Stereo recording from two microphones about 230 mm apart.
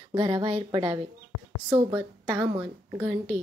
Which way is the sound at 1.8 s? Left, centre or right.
Centre.